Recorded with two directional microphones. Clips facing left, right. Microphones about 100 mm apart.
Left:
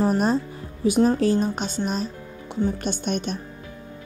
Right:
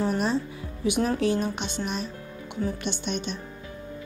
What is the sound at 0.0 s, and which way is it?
A woman's voice, 40° left (ahead or behind).